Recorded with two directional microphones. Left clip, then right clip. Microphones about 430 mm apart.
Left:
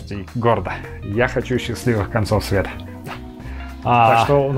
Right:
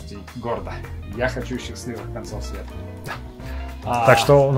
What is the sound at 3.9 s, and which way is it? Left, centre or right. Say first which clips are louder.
Speech: left 7 dB; left.